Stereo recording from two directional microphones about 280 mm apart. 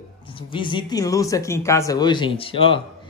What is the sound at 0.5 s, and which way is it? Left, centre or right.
A man's voice, centre.